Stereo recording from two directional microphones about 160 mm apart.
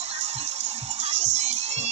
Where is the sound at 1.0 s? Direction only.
45° right (ahead or behind).